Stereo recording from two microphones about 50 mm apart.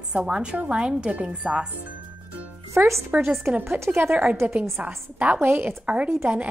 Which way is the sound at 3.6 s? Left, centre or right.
Right.